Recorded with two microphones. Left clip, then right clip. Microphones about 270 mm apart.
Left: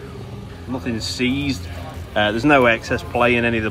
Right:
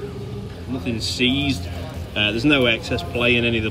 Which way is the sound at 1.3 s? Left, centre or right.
Left.